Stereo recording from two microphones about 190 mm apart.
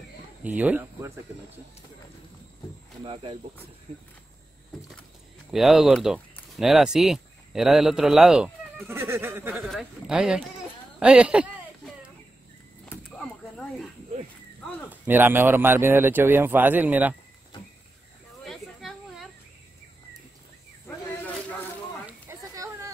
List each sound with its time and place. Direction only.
0.4 s speech: 10° right (ahead or behind)
3.0 s speech: 25° right (ahead or behind)
5.5 s speech: centre (ahead or behind)
9.6 s speech: centre (ahead or behind)
11.0 s a sound: 5° right (ahead or behind)
14.9 s speech: 10° right (ahead or behind)
18.4 s a sound: centre (ahead or behind)
22.3 s children playing: 15° right (ahead or behind)